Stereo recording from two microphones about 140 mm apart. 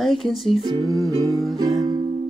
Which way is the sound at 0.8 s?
Centre (ahead or behind).